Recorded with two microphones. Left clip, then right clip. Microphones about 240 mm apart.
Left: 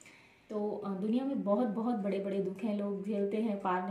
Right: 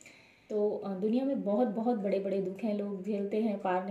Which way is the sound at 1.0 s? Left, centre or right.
Centre.